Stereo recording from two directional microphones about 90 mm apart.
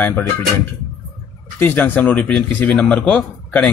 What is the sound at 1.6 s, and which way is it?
Speech, 25° left (ahead or behind).